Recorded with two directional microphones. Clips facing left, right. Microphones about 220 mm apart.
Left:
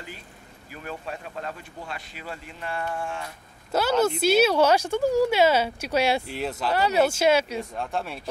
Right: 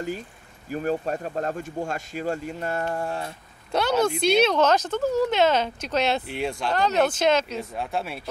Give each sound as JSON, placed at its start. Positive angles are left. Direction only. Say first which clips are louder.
{"t": 0.7, "sound": "speech", "louder": "right 10 dB", "side_deg": -45}
{"t": 3.7, "sound": "speech", "louder": "even", "side_deg": 5}
{"t": 7.7, "sound": "speech", "louder": "right 1 dB", "side_deg": -5}